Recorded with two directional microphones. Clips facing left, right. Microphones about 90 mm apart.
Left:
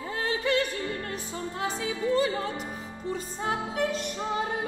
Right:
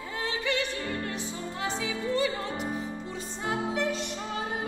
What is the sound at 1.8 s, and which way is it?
Music, 40° left (ahead or behind).